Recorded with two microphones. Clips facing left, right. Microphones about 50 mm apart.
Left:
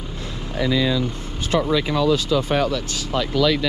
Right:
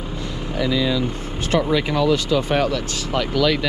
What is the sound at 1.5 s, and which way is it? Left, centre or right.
Speech, right.